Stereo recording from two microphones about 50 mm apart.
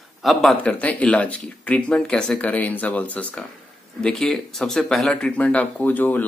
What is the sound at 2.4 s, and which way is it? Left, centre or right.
Speech, left.